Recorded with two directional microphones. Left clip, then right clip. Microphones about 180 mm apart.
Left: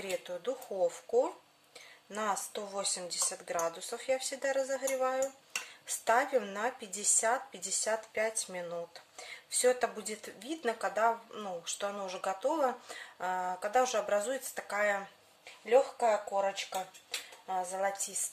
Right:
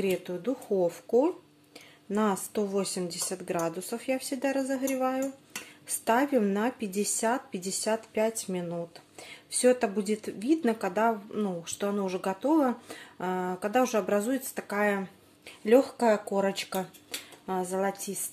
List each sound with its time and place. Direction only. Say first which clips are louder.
0.0 s speech: right 6 dB; 20° right (ahead or behind)
15.6 s speech: right 4 dB; 35° right (ahead or behind)
17.5 s speech: right 3 dB; 20° right (ahead or behind)